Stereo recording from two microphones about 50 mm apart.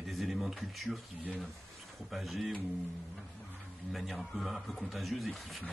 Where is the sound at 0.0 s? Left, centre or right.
Centre.